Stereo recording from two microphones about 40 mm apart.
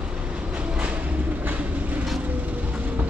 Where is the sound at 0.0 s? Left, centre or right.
Right.